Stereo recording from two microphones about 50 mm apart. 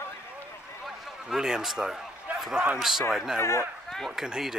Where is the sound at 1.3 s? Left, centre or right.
Centre.